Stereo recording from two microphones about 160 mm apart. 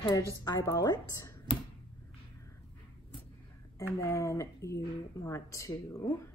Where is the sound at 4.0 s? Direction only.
20° left (ahead or behind).